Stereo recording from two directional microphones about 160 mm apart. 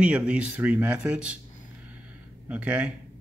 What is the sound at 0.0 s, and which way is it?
Speech, 10° right (ahead or behind).